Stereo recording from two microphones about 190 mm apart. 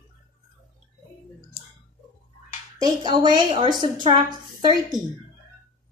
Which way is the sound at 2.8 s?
20° right (ahead or behind).